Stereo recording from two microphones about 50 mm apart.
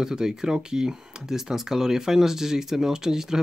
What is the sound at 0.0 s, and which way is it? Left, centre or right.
Speech, centre.